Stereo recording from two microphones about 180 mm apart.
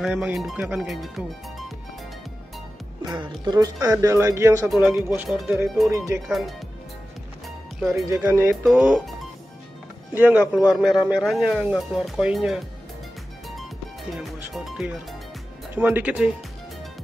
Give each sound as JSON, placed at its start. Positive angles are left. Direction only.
{"t": 0.0, "sound": "speech", "side_deg": -5}
{"t": 3.1, "sound": "speech", "side_deg": -25}
{"t": 4.6, "sound": "speech", "side_deg": -5}
{"t": 6.2, "sound": "speech", "side_deg": 0}
{"t": 8.2, "sound": "speech", "side_deg": -10}
{"t": 10.1, "sound": "speech", "side_deg": -10}
{"t": 14.1, "sound": "speech", "side_deg": 0}